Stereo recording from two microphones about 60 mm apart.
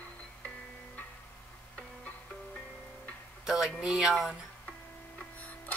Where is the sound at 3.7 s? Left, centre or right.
Centre.